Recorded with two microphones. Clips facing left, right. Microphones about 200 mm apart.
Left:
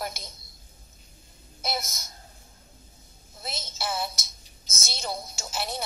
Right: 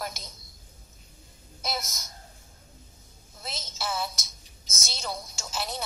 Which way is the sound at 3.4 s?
10° left (ahead or behind).